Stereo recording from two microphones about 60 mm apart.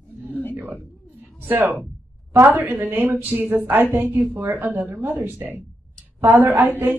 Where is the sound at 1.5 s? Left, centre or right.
Right.